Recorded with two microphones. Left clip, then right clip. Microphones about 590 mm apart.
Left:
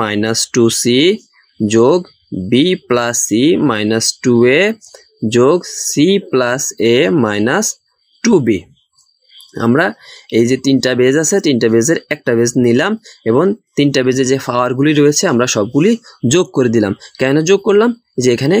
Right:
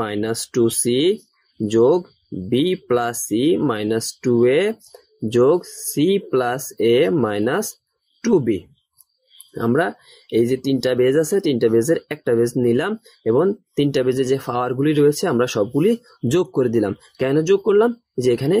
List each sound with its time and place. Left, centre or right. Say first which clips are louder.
0.0 s speech: left 8 dB; right